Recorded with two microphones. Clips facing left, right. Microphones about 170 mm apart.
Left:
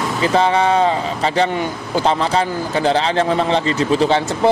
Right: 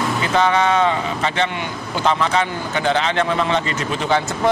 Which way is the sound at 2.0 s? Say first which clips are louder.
Left 1 dB; 35° left (ahead or behind).